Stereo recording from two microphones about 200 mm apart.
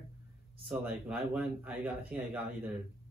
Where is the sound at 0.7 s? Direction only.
5° right (ahead or behind).